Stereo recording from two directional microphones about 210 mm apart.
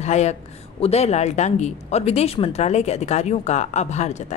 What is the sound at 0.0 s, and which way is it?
A woman's voice, 30° left (ahead or behind).